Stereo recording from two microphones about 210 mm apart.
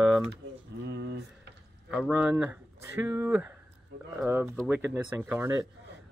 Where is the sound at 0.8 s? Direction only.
55° right (ahead or behind).